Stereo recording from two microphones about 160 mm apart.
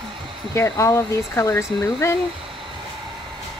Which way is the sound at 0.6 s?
20° left (ahead or behind).